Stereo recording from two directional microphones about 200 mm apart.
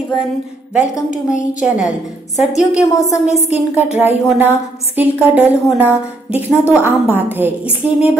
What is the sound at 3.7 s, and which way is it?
A woman's voice, 10° right (ahead or behind).